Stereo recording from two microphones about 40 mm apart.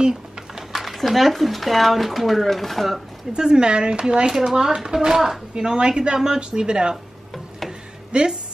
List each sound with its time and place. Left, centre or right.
0.6 s speech: centre
3.3 s speech: centre
5.5 s speech: right
8.1 s speech: right